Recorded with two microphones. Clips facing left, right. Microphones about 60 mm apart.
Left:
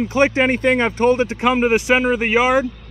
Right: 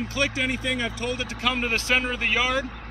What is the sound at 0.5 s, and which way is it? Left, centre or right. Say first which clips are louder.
Speech: left 11 dB; left.